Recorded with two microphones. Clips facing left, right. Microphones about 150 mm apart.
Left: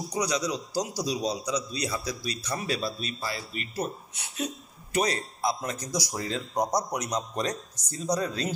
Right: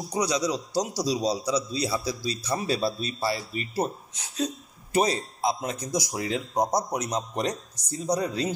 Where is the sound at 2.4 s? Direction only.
30° right (ahead or behind).